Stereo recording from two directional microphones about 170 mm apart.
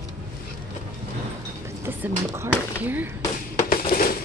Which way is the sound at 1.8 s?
15° right (ahead or behind).